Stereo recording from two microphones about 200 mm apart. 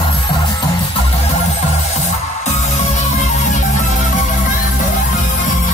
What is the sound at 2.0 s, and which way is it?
Music, 35° left (ahead or behind).